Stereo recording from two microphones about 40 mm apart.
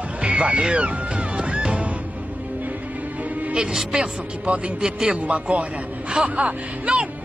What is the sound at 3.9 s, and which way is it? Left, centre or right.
A man's voice, right.